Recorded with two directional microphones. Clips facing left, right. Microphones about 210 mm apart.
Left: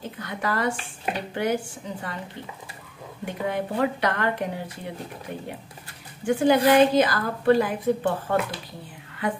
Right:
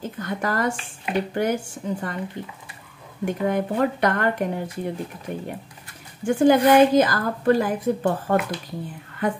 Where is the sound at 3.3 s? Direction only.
45° right (ahead or behind).